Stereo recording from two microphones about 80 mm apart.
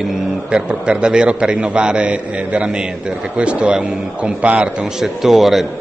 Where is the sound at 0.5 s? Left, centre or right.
Centre.